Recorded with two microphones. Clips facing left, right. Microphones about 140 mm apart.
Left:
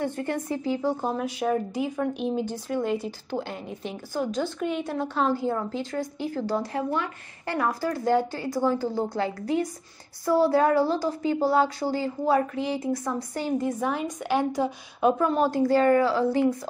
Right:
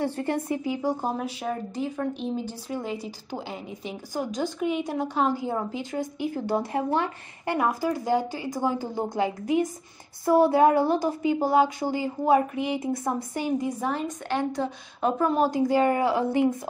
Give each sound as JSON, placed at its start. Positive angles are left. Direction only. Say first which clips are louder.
{"t": 0.0, "sound": "speech", "louder": "right 1 dB", "side_deg": -30}
{"t": 0.7, "sound": "a woman's voice", "louder": "left 3 dB", "side_deg": -15}
{"t": 1.1, "sound": "a woman's voice", "louder": "left 4 dB", "side_deg": 0}
{"t": 13.7, "sound": "a woman's voice", "louder": "left 1 dB", "side_deg": 0}